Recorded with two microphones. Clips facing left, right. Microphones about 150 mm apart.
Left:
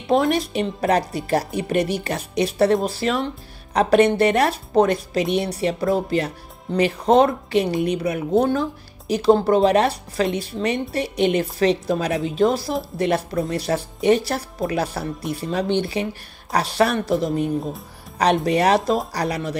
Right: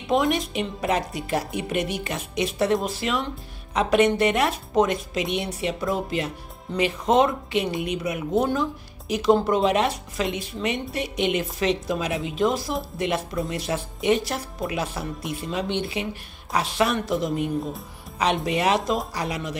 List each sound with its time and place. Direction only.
0.1 s a woman's voice: 35° left (ahead or behind)